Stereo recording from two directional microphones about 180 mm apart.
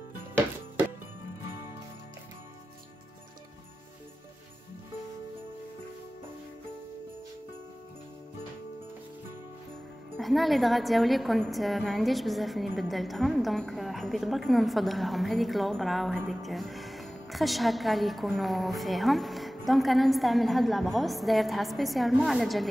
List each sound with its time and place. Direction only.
10.1 s a woman's voice: centre (ahead or behind)